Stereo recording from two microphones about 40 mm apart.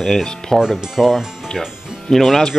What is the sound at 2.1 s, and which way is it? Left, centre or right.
Speech, centre.